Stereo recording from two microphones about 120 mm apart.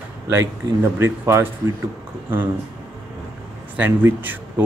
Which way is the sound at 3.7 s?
15° right (ahead or behind).